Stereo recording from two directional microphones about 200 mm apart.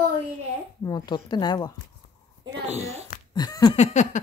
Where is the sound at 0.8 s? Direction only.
20° left (ahead or behind).